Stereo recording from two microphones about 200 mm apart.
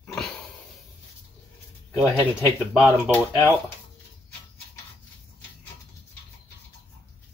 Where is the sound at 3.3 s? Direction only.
15° left (ahead or behind).